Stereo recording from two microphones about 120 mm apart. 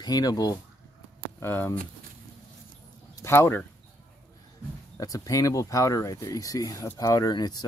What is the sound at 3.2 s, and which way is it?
Speech, 20° left (ahead or behind).